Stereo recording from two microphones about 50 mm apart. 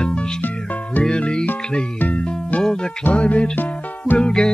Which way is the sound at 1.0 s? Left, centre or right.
Centre.